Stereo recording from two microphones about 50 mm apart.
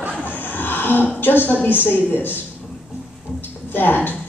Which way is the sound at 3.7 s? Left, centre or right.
Left.